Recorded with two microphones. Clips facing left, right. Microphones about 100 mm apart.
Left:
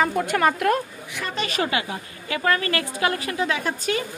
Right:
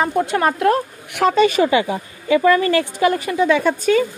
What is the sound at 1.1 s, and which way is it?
Speech, 70° right (ahead or behind).